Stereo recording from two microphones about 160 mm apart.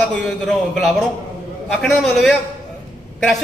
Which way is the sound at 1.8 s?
5° left (ahead or behind).